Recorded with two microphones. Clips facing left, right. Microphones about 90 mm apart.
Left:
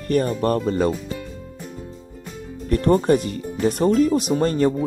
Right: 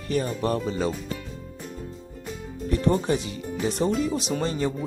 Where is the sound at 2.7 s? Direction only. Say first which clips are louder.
Left 6 dB; 50° left (ahead or behind).